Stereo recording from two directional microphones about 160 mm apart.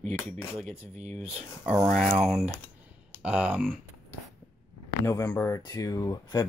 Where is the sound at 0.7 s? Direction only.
45° right (ahead or behind).